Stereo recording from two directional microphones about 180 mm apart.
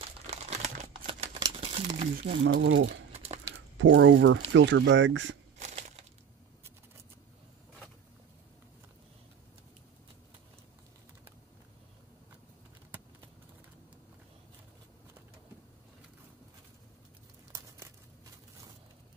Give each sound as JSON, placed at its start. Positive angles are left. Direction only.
{"t": 0.5, "sound": "a sound", "side_deg": -40}
{"t": 1.6, "sound": "crumpling", "side_deg": -35}
{"t": 2.1, "sound": "speech", "side_deg": -75}
{"t": 5.6, "sound": "crushing", "side_deg": -40}
{"t": 17.5, "sound": "crumpling", "side_deg": -20}